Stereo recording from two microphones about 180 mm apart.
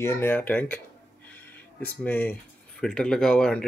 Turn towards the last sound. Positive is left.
turn(degrees=5)  # may be behind; listen again after turning